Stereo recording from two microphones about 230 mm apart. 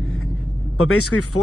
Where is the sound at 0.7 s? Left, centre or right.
Left.